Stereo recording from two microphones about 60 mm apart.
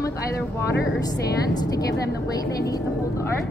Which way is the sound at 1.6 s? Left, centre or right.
Left.